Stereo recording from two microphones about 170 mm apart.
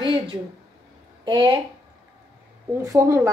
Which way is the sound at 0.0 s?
30° right (ahead or behind).